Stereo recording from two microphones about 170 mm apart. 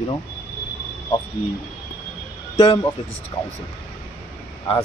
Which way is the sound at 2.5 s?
30° left (ahead or behind).